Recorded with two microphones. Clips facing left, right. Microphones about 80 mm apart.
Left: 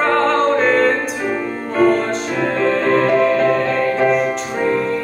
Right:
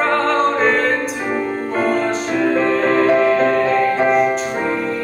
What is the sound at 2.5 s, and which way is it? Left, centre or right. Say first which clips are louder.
Music: left 2 dB; centre.